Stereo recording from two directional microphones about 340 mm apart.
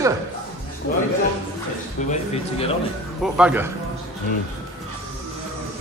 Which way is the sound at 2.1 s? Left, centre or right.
Centre.